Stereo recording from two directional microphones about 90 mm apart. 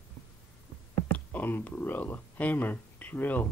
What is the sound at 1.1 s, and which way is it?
Speech, 20° left (ahead or behind).